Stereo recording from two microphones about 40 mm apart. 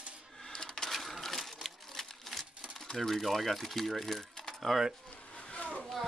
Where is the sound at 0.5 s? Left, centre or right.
Centre.